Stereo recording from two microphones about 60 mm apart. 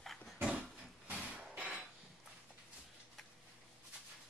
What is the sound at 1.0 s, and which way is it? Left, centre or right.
Hammer, centre.